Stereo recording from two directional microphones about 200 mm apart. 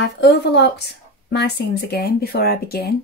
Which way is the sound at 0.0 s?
55° left (ahead or behind).